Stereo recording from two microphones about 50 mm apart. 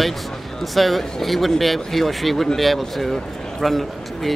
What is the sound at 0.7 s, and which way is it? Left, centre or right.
Speech, centre.